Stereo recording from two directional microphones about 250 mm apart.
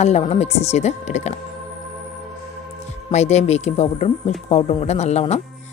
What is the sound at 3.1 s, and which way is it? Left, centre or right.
Speech, left.